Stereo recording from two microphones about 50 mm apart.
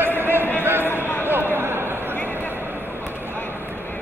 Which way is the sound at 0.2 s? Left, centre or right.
Right.